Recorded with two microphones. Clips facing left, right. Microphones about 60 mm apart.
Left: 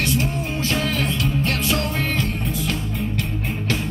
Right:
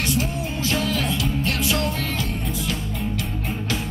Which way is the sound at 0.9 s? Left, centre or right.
Left.